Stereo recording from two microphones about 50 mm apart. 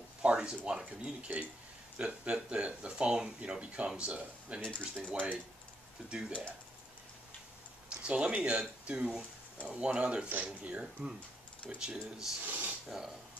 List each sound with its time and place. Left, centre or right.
0.2 s a sound: centre
0.7 s speech: centre
4.6 s speech: left
7.9 s speech: right
11.8 s speech: centre
12.4 s speech: right
12.8 s speech: centre